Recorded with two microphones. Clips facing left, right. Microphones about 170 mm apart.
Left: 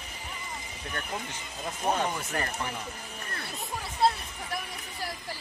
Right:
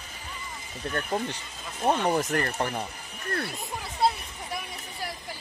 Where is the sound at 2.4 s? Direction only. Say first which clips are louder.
Right 5 dB; 55° right (ahead or behind).